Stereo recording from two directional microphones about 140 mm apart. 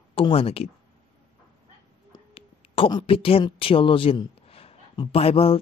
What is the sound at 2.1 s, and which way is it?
Speech, 40° left (ahead or behind).